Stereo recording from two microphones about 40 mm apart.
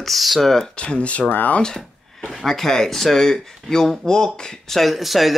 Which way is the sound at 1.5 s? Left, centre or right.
Left.